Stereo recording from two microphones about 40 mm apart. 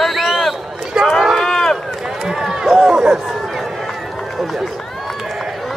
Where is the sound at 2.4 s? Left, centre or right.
Centre.